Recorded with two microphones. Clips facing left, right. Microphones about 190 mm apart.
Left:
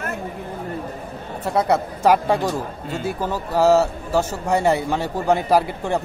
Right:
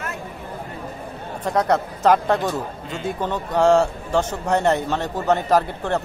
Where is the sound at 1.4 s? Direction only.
10° left (ahead or behind).